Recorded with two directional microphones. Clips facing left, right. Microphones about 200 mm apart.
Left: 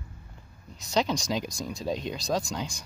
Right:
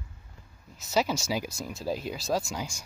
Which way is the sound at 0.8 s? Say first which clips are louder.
Even; 5° right (ahead or behind).